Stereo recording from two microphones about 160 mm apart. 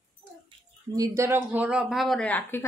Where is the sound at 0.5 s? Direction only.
35° right (ahead or behind).